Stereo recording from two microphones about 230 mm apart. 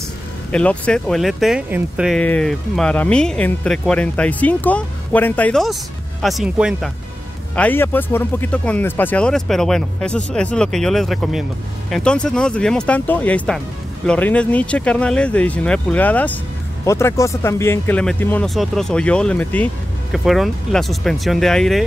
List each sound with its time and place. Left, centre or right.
0.5 s speech: centre